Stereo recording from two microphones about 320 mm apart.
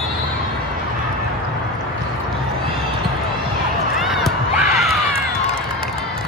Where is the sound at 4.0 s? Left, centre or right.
Centre.